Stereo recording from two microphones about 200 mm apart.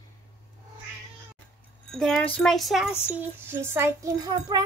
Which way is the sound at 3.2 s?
10° right (ahead or behind).